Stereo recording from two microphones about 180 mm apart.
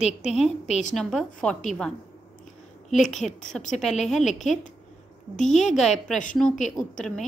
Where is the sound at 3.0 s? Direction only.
Centre (ahead or behind).